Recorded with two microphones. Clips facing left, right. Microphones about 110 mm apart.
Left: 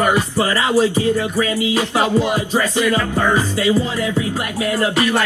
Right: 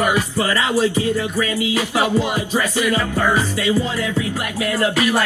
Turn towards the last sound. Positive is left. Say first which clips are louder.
# left 2 dB
turn(degrees=20)  # may be behind; listen again after turning